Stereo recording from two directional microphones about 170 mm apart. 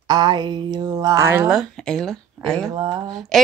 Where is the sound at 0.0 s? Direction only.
25° right (ahead or behind).